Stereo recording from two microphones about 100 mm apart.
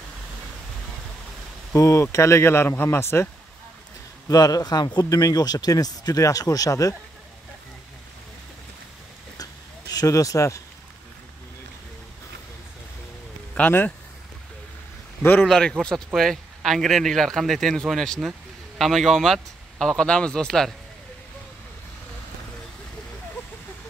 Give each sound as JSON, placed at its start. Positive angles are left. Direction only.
{"t": 1.7, "sound": "speech", "side_deg": 30}
{"t": 4.3, "sound": "speech", "side_deg": 40}
{"t": 9.4, "sound": "a sound", "side_deg": 40}
{"t": 13.6, "sound": "speech", "side_deg": 15}
{"t": 15.4, "sound": "speech", "side_deg": 5}